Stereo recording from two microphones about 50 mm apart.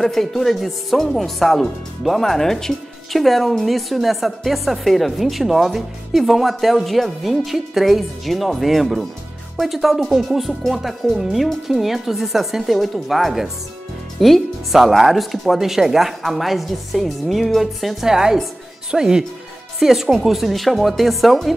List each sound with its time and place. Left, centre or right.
0.0 s speech: centre